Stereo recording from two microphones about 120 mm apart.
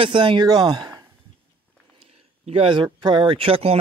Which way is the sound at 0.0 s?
45° right (ahead or behind).